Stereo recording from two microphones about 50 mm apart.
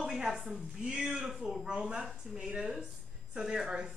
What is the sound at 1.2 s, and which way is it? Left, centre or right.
A woman's voice, centre.